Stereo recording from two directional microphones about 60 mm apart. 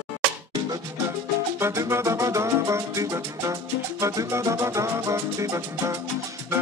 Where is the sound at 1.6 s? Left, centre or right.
Right.